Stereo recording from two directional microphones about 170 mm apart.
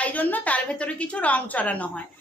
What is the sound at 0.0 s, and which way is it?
A child's voice, 10° left (ahead or behind).